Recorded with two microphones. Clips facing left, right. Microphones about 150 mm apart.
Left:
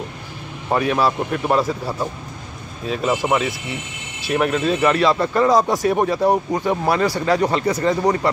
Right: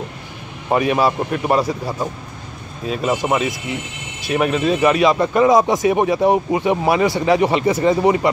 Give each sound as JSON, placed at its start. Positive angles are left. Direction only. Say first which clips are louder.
{"t": 0.7, "sound": "a man's voice", "louder": "right 2 dB", "side_deg": -10}
{"t": 2.9, "sound": "speech", "louder": "right 1 dB", "side_deg": 0}
{"t": 3.2, "sound": "a man's voice", "louder": "right 1 dB", "side_deg": -10}
{"t": 8.0, "sound": "a man's voice", "louder": "right 3 dB", "side_deg": -10}